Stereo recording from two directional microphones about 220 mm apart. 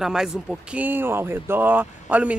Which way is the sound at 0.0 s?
Centre (ahead or behind).